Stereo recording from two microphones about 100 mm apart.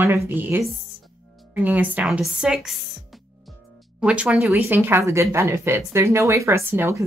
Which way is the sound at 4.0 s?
10° right (ahead or behind).